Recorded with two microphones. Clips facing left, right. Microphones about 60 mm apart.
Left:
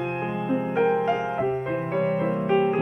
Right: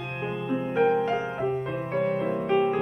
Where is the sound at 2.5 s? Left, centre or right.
Centre.